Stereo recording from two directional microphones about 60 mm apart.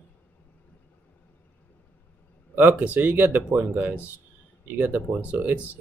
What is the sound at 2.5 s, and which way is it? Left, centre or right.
Speech, right.